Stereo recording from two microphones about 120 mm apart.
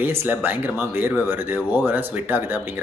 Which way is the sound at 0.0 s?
15° right (ahead or behind).